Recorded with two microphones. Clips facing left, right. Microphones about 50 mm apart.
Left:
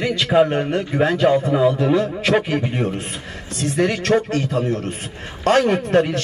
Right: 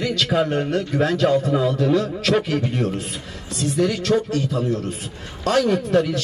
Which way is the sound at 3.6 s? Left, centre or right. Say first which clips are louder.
Left 1 dB; left.